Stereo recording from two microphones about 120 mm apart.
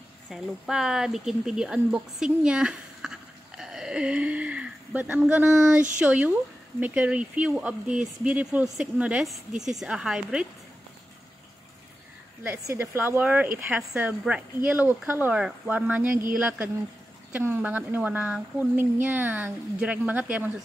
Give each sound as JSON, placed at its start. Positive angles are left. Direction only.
{"t": 0.3, "sound": "speech", "side_deg": -5}
{"t": 5.4, "sound": "a sound", "side_deg": -25}
{"t": 5.9, "sound": "speech", "side_deg": -15}
{"t": 12.6, "sound": "speech", "side_deg": -20}